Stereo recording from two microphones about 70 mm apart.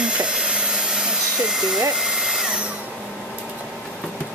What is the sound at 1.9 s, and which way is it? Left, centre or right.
Drill, centre.